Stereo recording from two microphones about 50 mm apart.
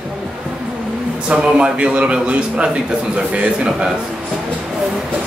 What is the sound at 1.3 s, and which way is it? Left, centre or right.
A man's voice, right.